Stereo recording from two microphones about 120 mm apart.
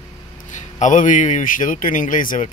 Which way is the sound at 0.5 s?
90° left.